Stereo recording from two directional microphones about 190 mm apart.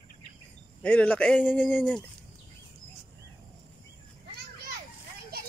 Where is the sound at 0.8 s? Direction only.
5° left (ahead or behind).